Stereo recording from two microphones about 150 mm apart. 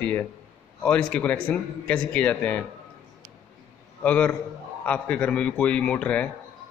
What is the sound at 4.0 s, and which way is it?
A man's voice, 10° left (ahead or behind).